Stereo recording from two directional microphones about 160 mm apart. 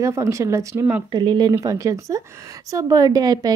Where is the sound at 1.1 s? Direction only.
30° right (ahead or behind).